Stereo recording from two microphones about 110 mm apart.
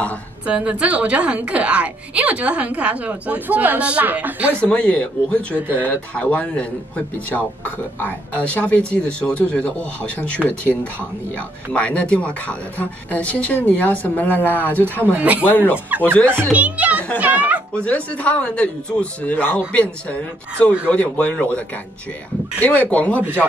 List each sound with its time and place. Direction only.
0.5 s speech: 10° right (ahead or behind)
4.6 s speech: 10° left (ahead or behind)
15.1 s speech: 15° right (ahead or behind)
15.4 s speech: 15° left (ahead or behind)
16.5 s speech: 15° right (ahead or behind)
17.8 s speech: 10° left (ahead or behind)